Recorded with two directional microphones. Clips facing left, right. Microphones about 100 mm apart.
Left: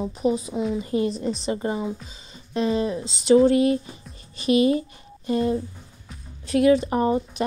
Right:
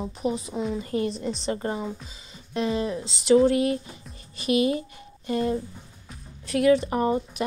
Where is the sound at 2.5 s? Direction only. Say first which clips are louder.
Left 3 dB; 25° left (ahead or behind).